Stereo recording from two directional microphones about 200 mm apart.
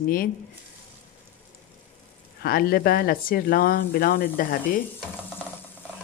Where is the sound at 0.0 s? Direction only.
45° left (ahead or behind).